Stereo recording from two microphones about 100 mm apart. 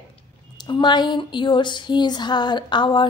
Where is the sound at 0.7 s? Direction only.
50° left (ahead or behind).